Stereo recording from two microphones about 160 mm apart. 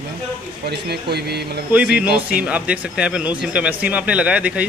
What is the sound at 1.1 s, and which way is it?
Speech, 90° right.